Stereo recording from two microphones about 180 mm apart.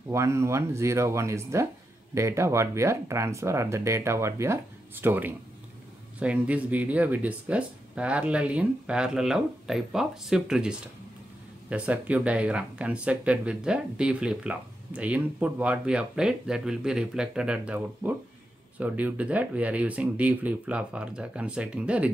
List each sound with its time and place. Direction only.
0.1 s speech: 15° right (ahead or behind)